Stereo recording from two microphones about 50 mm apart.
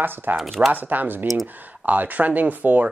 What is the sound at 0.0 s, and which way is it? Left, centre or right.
Speech, right.